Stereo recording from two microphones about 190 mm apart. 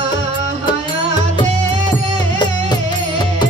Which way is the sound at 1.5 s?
40° right (ahead or behind).